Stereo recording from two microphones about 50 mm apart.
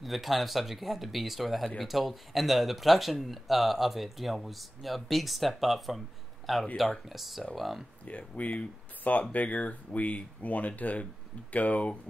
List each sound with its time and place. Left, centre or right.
0.0 s speech: centre
8.0 s speech: left